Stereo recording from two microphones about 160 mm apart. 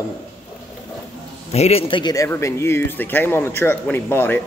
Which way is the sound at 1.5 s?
40° left (ahead or behind).